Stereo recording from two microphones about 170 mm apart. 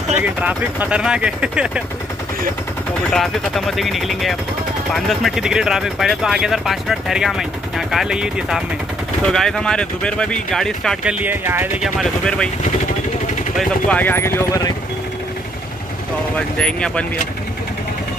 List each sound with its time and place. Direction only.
0.2 s speech: 10° right (ahead or behind)
3.1 s speech: centre (ahead or behind)
11.1 s speech: 10° right (ahead or behind)
11.8 s speech: 5° left (ahead or behind)
13.6 s speech: 5° left (ahead or behind)
16.5 s speech: 5° left (ahead or behind)